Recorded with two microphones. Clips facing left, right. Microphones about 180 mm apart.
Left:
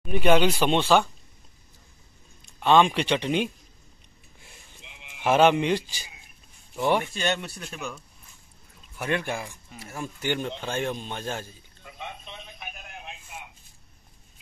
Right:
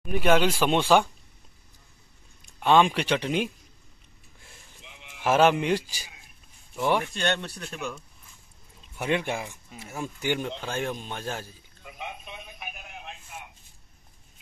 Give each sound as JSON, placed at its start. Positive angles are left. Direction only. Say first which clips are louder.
{"t": 0.0, "sound": "speech", "louder": "left 1 dB", "side_deg": -5}
{"t": 2.6, "sound": "speech", "louder": "left 1 dB", "side_deg": -10}
{"t": 5.2, "sound": "speech", "louder": "left 1 dB", "side_deg": -5}
{"t": 8.9, "sound": "speech", "louder": "right 1 dB", "side_deg": -20}
{"t": 10.2, "sound": "a sound", "louder": "even", "side_deg": -10}